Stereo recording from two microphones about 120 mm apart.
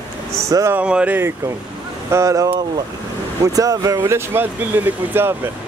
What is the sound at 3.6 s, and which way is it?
Speech, 30° right (ahead or behind).